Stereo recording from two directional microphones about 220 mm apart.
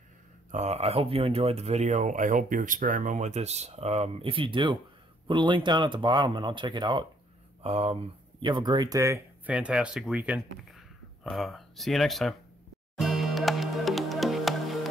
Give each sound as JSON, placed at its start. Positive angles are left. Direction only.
{"t": 0.5, "sound": "speech", "side_deg": -30}
{"t": 12.9, "sound": "music", "side_deg": 0}